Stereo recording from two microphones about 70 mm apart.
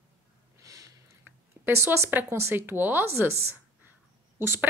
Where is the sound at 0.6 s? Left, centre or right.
Right.